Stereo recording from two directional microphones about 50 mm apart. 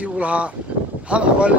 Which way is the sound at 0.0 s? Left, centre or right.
Right.